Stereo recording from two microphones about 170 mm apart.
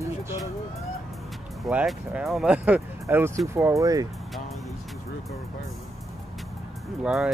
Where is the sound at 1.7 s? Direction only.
5° right (ahead or behind).